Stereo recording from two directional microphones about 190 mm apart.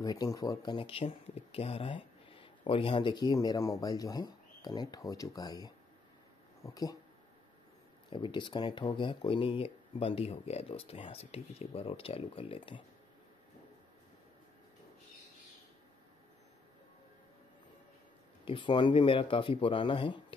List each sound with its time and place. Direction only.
0.0 s speech: 20° left (ahead or behind)
8.1 s speech: 25° left (ahead or behind)
18.4 s speech: 25° left (ahead or behind)